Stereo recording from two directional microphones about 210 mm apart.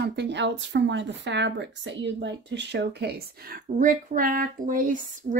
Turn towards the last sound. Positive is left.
turn(degrees=-40)  # may be behind; listen again after turning